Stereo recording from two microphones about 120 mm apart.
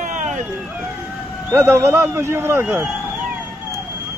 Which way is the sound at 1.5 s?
20° right (ahead or behind).